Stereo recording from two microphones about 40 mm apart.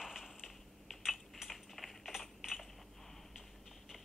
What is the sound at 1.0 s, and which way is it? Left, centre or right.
Typing, centre.